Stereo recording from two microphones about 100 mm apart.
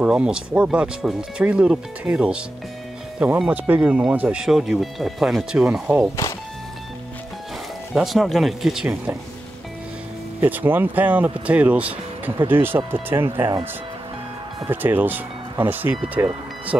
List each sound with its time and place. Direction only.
0.0 s speech: 10° right (ahead or behind)
7.9 s speech: centre (ahead or behind)
10.4 s speech: 20° right (ahead or behind)
14.7 s speech: 20° right (ahead or behind)